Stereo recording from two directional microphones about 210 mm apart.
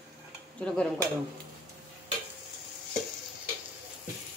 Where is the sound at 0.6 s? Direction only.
5° left (ahead or behind).